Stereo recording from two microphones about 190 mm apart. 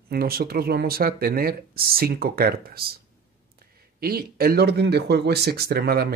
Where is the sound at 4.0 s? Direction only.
50° right (ahead or behind).